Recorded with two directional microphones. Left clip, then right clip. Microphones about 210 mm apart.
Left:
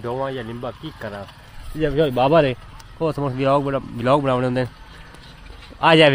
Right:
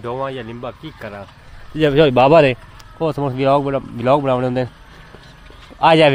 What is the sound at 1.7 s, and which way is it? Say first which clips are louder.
Speech: right 7 dB; 55° right (ahead or behind).